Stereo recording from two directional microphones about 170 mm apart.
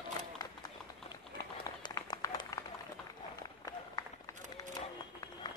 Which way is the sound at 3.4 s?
20° left (ahead or behind).